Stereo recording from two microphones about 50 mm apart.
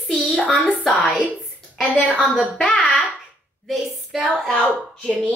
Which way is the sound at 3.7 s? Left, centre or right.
Centre.